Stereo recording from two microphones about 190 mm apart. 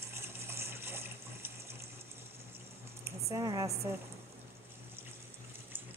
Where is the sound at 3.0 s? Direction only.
15° right (ahead or behind).